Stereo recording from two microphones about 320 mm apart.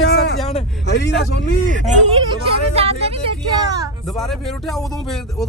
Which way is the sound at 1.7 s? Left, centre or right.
Right.